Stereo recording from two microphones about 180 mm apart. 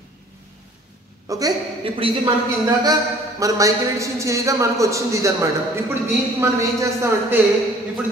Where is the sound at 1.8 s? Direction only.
30° right (ahead or behind).